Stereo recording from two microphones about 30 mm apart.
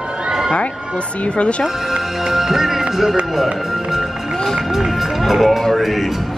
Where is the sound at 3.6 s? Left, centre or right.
Centre.